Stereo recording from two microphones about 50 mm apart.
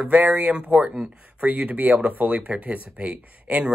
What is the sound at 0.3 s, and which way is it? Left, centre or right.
Speech, right.